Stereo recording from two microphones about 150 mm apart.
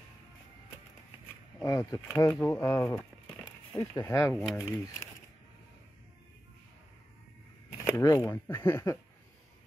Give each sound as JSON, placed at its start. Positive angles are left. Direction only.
{"t": 1.6, "sound": "speech", "side_deg": 20}
{"t": 7.9, "sound": "speech", "side_deg": 25}